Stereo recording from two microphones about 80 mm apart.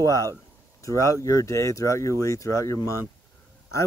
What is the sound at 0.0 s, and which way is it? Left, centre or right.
Speech, left.